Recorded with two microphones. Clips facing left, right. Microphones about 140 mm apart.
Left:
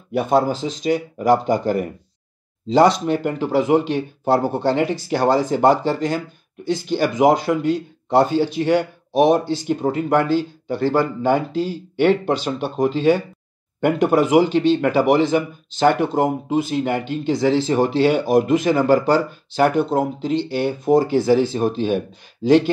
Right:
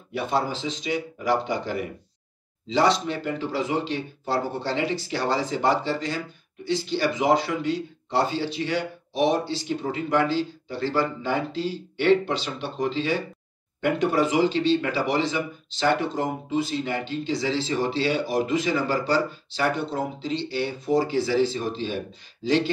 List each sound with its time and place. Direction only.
0.1 s speech: 50° left (ahead or behind)